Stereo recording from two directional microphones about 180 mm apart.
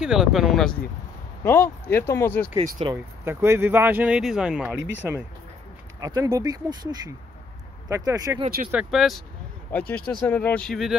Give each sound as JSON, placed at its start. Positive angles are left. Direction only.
{"t": 0.0, "sound": "speech", "side_deg": -5}
{"t": 1.4, "sound": "speech", "side_deg": 15}
{"t": 2.5, "sound": "speech", "side_deg": -25}
{"t": 3.3, "sound": "speech", "side_deg": -15}
{"t": 5.9, "sound": "speech", "side_deg": -20}
{"t": 8.7, "sound": "speech", "side_deg": 0}